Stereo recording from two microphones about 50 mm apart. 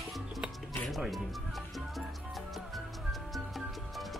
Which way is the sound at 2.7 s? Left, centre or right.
Centre.